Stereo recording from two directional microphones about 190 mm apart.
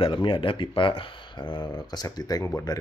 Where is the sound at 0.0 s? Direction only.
25° left (ahead or behind).